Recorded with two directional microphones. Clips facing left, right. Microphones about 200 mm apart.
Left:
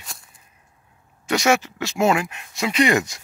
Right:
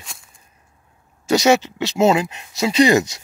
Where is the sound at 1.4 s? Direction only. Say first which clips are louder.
Right 3 dB; 20° right (ahead or behind).